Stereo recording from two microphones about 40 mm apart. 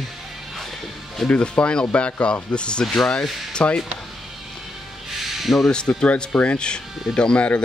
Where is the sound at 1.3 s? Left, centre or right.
Left.